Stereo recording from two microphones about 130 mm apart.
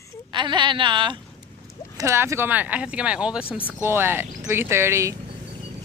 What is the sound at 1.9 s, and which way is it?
Speech, 20° right (ahead or behind).